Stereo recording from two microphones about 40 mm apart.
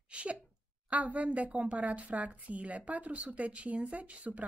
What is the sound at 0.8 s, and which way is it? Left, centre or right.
A woman's voice, right.